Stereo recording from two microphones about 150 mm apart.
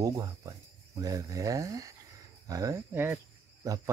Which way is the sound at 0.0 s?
25° right (ahead or behind).